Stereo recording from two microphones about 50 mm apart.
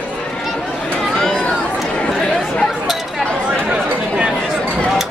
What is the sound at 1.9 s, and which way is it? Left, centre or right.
Chatter, centre.